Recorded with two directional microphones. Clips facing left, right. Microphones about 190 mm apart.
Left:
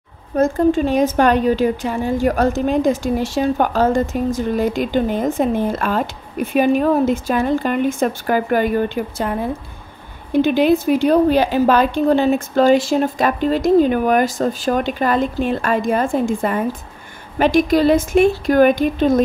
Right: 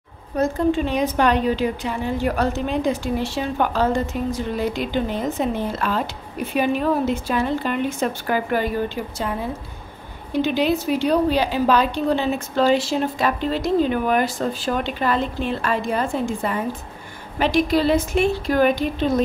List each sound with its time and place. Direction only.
0.4 s a woman's voice: 45° left (ahead or behind)
10.4 s a woman's voice: 50° left (ahead or behind)